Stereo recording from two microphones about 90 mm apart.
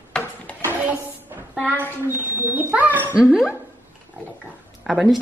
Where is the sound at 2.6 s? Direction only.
20° right (ahead or behind).